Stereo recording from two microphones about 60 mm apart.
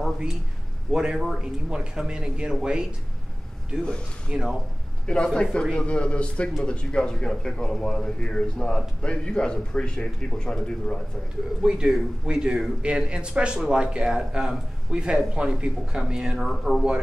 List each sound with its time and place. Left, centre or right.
0.9 s speech: centre
5.0 s speech: centre
11.6 s speech: centre